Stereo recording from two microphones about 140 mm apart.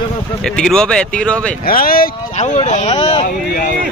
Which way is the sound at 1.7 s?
90° left.